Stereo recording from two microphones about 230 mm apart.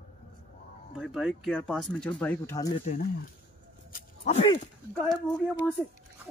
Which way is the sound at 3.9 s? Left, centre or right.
Left.